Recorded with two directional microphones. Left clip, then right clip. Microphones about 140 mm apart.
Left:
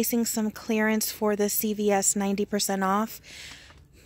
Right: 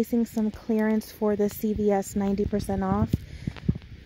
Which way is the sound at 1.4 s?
5° right (ahead or behind).